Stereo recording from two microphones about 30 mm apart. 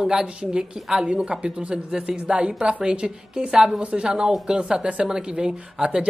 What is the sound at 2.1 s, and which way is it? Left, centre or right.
Speech, centre.